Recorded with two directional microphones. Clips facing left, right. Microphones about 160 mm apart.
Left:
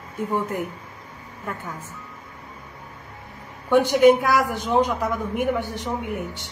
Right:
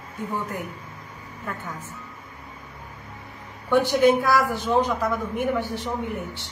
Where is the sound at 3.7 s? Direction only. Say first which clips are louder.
Left 3 dB; 15° left (ahead or behind).